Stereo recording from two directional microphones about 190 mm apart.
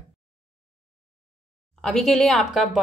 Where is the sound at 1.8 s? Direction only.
Centre (ahead or behind).